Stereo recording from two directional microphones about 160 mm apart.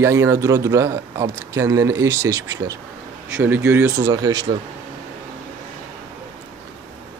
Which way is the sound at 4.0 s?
25° right (ahead or behind).